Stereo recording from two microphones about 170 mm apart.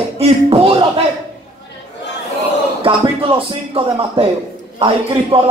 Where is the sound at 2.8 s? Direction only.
35° right (ahead or behind).